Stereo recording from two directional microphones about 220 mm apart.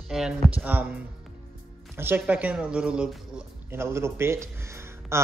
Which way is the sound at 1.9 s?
10° right (ahead or behind).